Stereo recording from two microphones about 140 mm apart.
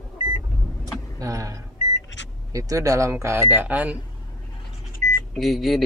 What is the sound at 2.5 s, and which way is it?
Speech, 25° right (ahead or behind).